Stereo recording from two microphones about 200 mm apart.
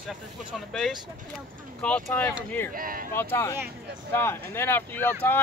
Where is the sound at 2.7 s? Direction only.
45° right (ahead or behind).